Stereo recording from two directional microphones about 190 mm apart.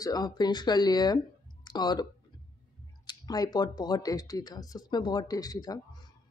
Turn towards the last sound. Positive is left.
turn(degrees=20)  # may be behind; listen again after turning